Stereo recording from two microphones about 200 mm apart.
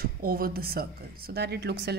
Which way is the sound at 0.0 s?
45° right (ahead or behind).